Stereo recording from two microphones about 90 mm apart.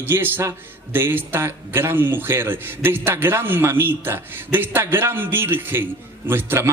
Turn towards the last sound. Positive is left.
turn(degrees=-25)  # may be behind; listen again after turning